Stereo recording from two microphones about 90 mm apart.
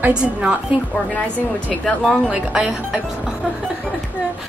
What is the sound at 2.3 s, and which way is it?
Speech, 5° right (ahead or behind).